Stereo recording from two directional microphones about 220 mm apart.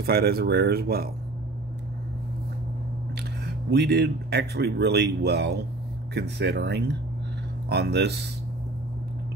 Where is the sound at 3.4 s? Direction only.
50° right (ahead or behind).